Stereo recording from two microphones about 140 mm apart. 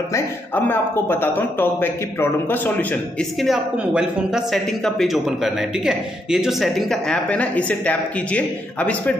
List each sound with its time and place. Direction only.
0.1 s speech: 15° left (ahead or behind)
3.3 s a woman's voice: 5° right (ahead or behind)